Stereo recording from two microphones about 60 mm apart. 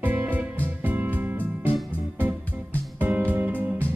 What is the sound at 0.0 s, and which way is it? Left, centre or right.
Music, right.